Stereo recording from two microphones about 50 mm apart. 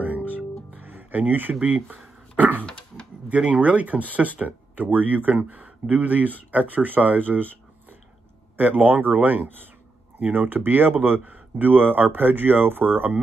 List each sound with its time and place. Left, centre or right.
0.7 s a sound: right
2.6 s dog: centre
3.3 s speech: right
8.5 s speech: right